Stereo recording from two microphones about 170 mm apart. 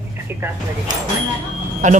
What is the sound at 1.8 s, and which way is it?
Speech, 45° right (ahead or behind).